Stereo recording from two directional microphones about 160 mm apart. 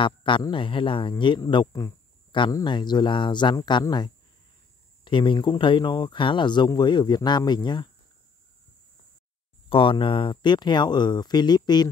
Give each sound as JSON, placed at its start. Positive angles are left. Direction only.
{"t": 0.0, "sound": "speech", "side_deg": 30}
{"t": 9.7, "sound": "speech", "side_deg": 35}